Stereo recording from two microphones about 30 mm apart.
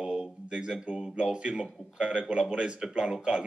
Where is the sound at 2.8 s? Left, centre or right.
Right.